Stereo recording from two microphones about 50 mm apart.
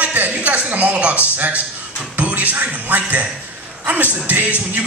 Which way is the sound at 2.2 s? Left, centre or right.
Right.